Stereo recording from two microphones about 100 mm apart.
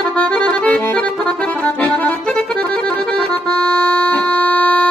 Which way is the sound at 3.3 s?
15° left (ahead or behind).